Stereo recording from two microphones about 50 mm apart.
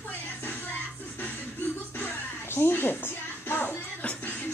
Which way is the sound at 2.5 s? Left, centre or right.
Left.